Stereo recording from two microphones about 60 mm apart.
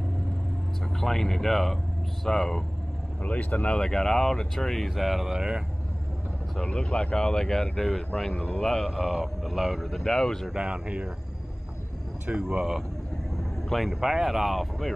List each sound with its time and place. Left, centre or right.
0.9 s speech: centre
3.2 s speech: left
3.9 s speech: centre
6.5 s speech: centre
10.5 s speech: centre
12.4 s speech: centre
13.7 s speech: centre